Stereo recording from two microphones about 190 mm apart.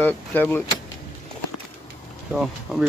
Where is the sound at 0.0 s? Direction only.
10° left (ahead or behind).